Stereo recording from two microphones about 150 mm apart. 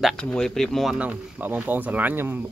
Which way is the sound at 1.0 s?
10° right (ahead or behind).